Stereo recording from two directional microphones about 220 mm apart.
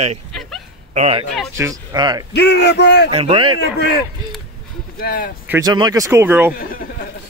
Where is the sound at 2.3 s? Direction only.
50° left (ahead or behind).